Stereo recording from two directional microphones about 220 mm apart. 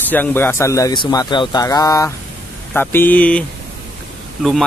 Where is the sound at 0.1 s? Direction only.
10° left (ahead or behind).